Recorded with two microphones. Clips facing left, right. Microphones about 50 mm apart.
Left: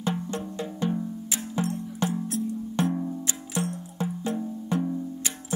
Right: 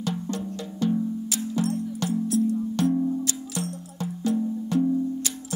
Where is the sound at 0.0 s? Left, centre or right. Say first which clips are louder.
Even; left.